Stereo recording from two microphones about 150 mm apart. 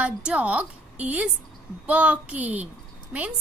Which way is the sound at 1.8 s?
10° right (ahead or behind).